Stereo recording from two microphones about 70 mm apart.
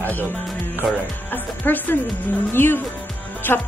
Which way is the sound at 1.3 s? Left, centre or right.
Left.